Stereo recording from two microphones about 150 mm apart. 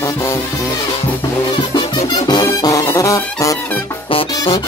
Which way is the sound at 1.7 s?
30° left (ahead or behind).